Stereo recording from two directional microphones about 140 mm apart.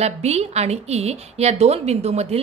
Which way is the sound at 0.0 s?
50° right (ahead or behind).